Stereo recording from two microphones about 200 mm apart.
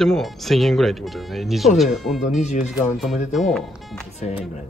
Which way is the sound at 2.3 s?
35° left (ahead or behind).